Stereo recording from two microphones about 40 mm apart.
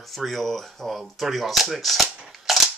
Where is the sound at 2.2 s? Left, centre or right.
Centre.